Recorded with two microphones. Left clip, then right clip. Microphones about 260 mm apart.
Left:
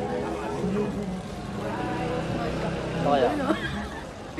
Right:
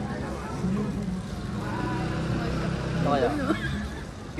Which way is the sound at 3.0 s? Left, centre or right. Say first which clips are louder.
Left 2 dB; left.